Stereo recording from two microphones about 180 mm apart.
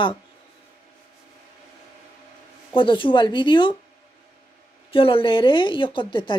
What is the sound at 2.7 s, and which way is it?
Speech, 30° left (ahead or behind).